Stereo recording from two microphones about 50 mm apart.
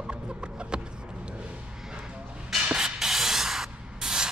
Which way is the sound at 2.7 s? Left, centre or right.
Centre.